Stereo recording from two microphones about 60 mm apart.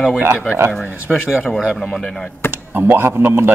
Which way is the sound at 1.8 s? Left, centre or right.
Centre.